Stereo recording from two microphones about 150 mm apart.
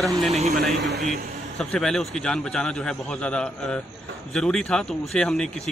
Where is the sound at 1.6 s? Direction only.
5° left (ahead or behind).